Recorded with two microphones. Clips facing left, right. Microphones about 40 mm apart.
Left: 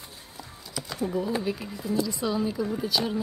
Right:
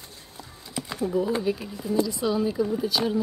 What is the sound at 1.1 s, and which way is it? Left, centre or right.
Speech, centre.